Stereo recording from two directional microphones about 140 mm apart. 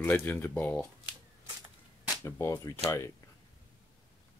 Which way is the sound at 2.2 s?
20° left (ahead or behind).